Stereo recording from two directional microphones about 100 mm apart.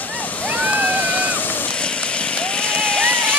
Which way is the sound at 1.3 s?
10° left (ahead or behind).